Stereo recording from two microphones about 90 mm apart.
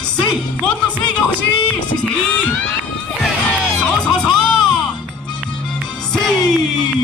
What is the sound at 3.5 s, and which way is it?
Music, 10° left (ahead or behind).